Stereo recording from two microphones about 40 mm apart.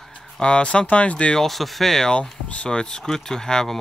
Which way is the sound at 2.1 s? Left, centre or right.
Left.